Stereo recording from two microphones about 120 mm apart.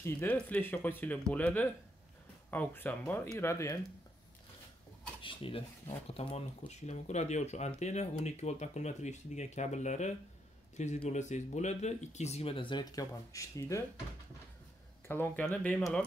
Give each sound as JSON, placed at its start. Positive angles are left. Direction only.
{"t": 0.0, "sound": "speech", "side_deg": 15}
{"t": 5.2, "sound": "a sound", "side_deg": 45}
{"t": 5.9, "sound": "speech", "side_deg": 60}
{"t": 15.0, "sound": "speech", "side_deg": 15}